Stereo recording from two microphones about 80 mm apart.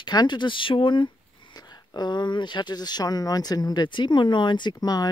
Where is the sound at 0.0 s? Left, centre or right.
Left.